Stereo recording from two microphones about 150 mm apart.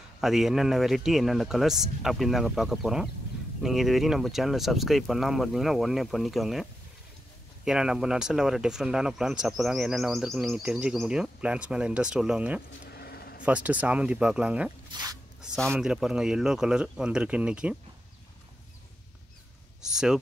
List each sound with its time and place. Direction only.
0.2 s speech: centre (ahead or behind)
12.8 s a sound: 90° left
13.4 s speech: 10° right (ahead or behind)
14.9 s a sound: 25° right (ahead or behind)
15.4 s a man's voice: 5° left (ahead or behind)
19.8 s speech: 5° right (ahead or behind)